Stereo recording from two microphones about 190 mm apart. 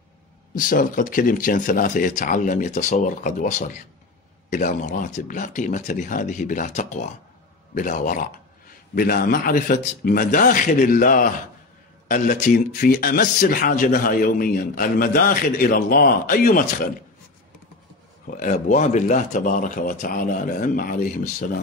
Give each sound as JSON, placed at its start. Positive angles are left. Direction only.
{"t": 0.6, "sound": "speech", "side_deg": 45}
{"t": 18.2, "sound": "speech", "side_deg": 45}